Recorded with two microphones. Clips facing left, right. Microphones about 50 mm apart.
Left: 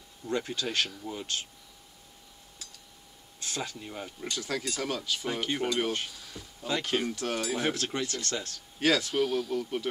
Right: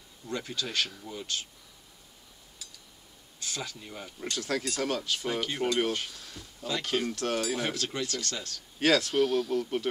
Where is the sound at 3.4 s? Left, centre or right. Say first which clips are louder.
Left 2 dB; left.